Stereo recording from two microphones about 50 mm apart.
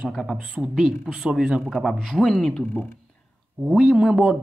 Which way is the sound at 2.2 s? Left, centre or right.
Centre.